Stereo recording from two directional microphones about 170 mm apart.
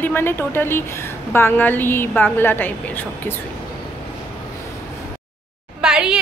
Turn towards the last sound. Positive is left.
turn(degrees=-5)  # may be behind; listen again after turning